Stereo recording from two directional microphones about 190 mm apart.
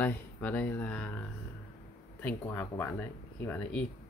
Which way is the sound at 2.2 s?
10° left (ahead or behind).